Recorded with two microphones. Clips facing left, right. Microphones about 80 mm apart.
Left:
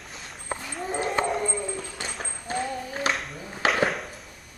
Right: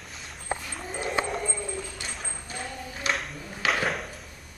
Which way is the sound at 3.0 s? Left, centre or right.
Left.